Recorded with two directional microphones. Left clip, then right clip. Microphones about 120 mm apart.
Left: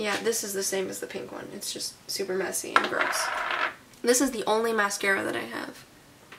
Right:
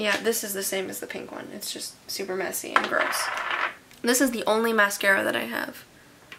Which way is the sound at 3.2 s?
5° left (ahead or behind).